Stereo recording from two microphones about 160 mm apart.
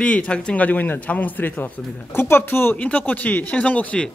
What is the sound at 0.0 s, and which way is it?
Speech, 5° left (ahead or behind).